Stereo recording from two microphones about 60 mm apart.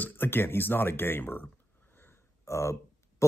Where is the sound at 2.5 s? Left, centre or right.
Left.